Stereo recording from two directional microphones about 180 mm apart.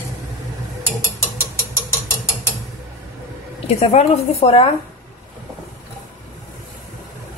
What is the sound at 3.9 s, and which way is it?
Speech, 35° left (ahead or behind).